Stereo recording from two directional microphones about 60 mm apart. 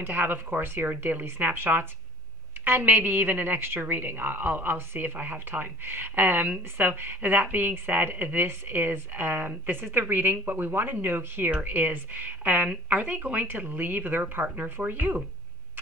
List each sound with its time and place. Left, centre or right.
0.0 s a woman's voice: right